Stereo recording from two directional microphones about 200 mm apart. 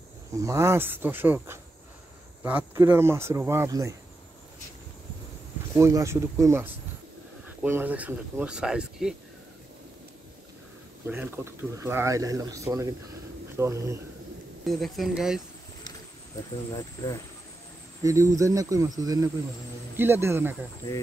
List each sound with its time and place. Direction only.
0.4 s speech: 15° right (ahead or behind)
5.8 s speech: 15° right (ahead or behind)
11.1 s speech: 10° right (ahead or behind)
14.7 s speech: centre (ahead or behind)
16.7 s speech: 15° left (ahead or behind)
18.0 s speech: 15° right (ahead or behind)